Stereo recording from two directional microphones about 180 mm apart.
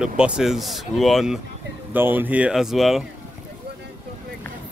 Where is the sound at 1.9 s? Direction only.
10° right (ahead or behind).